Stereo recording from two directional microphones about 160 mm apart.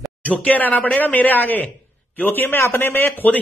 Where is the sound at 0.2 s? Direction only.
10° left (ahead or behind).